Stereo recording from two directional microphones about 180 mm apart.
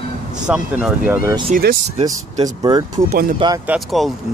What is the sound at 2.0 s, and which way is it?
Speech, 20° right (ahead or behind).